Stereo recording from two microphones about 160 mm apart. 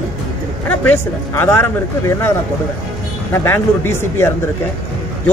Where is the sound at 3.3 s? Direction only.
15° left (ahead or behind).